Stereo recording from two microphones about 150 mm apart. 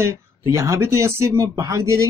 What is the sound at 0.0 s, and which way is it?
Speech, 20° right (ahead or behind).